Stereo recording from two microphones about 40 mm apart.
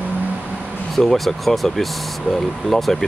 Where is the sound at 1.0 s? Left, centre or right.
Centre.